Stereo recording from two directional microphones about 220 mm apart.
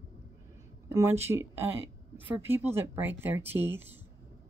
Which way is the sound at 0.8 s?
15° right (ahead or behind).